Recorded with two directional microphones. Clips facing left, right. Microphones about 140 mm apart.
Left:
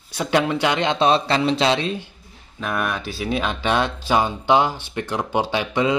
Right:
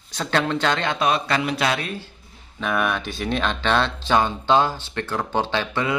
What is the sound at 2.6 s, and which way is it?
A man's voice, centre (ahead or behind).